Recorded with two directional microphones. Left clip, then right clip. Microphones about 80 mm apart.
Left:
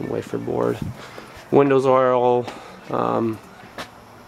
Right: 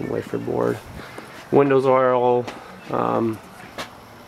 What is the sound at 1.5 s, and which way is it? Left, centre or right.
Speech, left.